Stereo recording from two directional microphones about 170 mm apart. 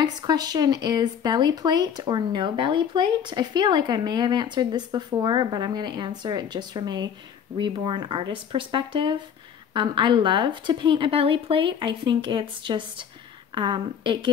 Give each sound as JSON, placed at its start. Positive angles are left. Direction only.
{"t": 0.0, "sound": "speech", "side_deg": -25}